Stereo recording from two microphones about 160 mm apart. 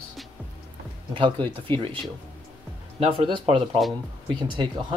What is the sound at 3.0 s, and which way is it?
Speech, 35° right (ahead or behind).